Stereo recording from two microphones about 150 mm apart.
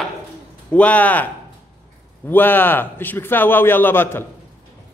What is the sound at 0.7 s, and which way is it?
A man's voice, 10° left (ahead or behind).